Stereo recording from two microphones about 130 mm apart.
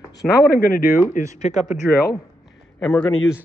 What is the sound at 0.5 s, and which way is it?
Speech, 90° left.